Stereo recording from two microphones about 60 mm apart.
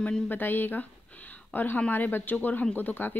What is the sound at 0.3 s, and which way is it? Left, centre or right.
Speech, left.